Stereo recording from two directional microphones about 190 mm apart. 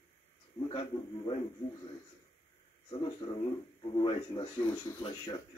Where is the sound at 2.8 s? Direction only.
25° left (ahead or behind).